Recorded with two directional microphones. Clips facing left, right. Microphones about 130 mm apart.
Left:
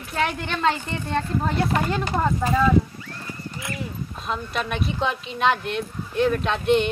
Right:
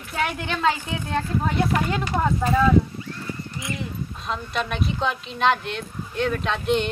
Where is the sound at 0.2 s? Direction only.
Centre (ahead or behind).